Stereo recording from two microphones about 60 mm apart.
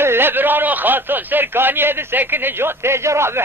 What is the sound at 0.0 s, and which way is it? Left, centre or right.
Speech, right.